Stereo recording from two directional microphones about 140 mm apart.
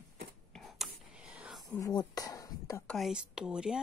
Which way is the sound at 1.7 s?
25° left (ahead or behind).